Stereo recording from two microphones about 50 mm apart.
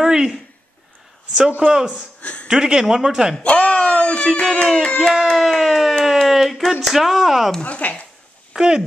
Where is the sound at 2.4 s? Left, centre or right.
Centre.